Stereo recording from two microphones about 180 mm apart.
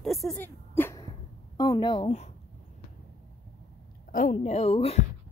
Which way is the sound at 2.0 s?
40° left (ahead or behind).